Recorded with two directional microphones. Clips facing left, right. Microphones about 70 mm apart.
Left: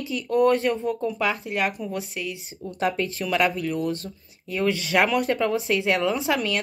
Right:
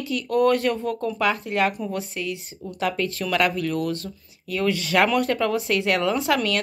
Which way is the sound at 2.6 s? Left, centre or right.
Left.